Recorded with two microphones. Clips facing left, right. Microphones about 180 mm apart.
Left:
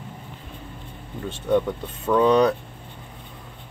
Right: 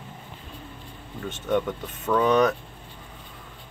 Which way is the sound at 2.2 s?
30° left (ahead or behind).